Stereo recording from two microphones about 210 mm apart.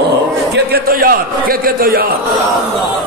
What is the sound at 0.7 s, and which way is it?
A man's voice, 45° right (ahead or behind).